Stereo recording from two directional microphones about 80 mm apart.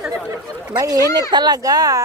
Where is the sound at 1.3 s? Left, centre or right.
Right.